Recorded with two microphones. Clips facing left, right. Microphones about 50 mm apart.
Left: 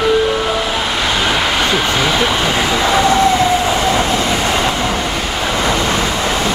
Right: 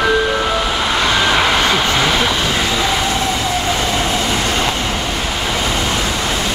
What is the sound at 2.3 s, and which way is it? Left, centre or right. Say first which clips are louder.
Vehicle: left 2 dB; centre.